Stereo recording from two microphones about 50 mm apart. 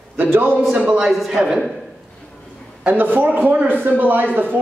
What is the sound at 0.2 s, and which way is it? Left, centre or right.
Speech, right.